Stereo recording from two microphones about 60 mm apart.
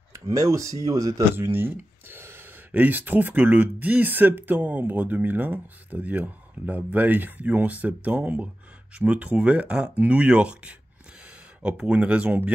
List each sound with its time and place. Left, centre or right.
0.3 s speech: right
0.8 s speech: right
1.3 s a sound: right
2.7 s speech: right